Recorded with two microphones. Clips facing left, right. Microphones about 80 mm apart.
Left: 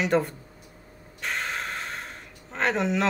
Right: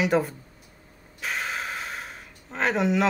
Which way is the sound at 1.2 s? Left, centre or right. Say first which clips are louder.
Even; centre.